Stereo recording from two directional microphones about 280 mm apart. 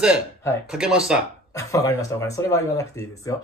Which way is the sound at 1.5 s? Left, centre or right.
Centre.